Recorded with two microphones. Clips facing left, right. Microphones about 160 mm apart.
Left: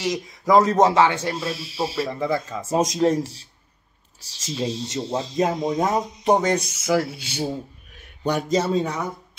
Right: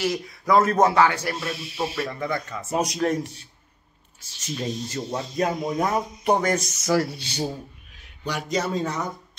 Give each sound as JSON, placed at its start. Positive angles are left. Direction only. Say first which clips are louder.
{"t": 0.0, "sound": "speech", "louder": "left 1 dB", "side_deg": 20}
{"t": 8.2, "sound": "a man's voice", "louder": "left 5 dB", "side_deg": 35}
{"t": 8.7, "sound": "speech", "louder": "left 3 dB", "side_deg": 10}